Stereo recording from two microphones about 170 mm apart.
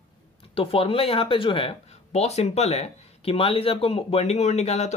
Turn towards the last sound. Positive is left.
turn(degrees=40)  # may be behind; listen again after turning